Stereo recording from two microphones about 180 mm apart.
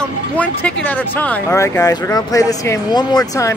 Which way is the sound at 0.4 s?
10° left (ahead or behind).